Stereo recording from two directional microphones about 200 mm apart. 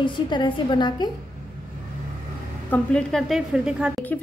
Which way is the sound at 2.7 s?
5° left (ahead or behind).